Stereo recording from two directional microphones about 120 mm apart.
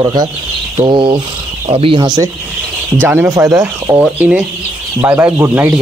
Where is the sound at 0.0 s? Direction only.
35° right (ahead or behind).